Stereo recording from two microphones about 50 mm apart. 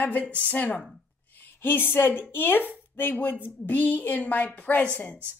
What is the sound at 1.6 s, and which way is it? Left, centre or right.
A woman's voice, left.